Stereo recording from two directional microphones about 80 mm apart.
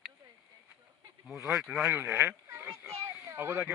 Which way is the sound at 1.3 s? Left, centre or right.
Centre.